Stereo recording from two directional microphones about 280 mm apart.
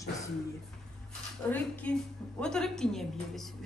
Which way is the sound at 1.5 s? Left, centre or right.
Centre.